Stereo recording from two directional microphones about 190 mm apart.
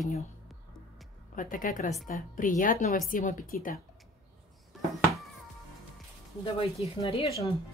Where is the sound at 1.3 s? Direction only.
45° left (ahead or behind).